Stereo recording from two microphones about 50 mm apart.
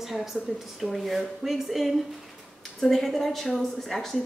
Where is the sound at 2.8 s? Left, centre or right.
Centre.